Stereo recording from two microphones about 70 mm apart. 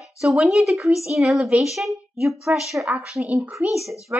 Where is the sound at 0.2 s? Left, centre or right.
Centre.